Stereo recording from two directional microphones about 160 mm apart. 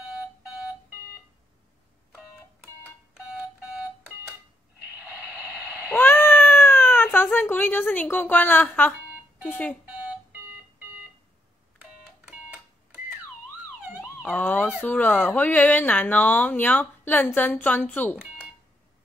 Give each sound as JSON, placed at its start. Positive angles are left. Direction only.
{"t": 5.2, "sound": "a sound", "side_deg": -5}
{"t": 5.9, "sound": "cat", "side_deg": 15}
{"t": 9.5, "sound": "speech", "side_deg": 10}
{"t": 10.3, "sound": "alarm clock", "side_deg": -10}
{"t": 12.3, "sound": "a sound", "side_deg": -10}
{"t": 14.2, "sound": "speech", "side_deg": 10}